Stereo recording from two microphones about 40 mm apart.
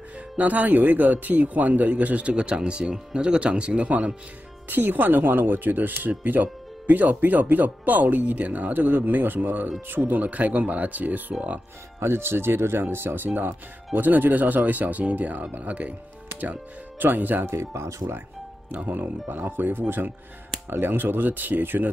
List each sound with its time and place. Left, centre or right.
0.4 s speech: right
4.6 s speech: right
10.2 s speech: right
12.0 s speech: right
12.9 s speech: right
13.9 s speech: right
17.0 s speech: right
18.9 s speech: right
19.3 s speech: right